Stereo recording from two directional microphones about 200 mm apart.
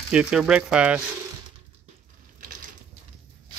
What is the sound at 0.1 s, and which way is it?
Speech, 5° right (ahead or behind).